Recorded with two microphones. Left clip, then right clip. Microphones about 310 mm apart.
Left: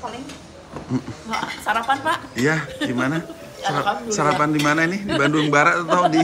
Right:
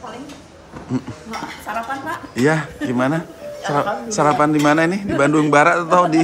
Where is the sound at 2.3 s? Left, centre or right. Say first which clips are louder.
Right 3 dB; centre.